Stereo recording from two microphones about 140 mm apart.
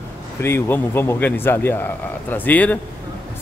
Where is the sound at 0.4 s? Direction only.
15° left (ahead or behind).